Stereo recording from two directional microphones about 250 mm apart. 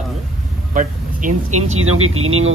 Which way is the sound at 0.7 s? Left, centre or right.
Right.